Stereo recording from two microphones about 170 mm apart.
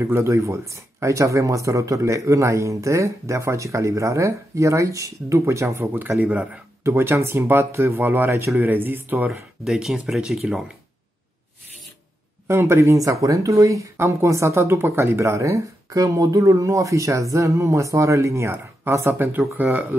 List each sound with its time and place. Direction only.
0.0 s speech: 15° right (ahead or behind)
12.4 s speech: 15° right (ahead or behind)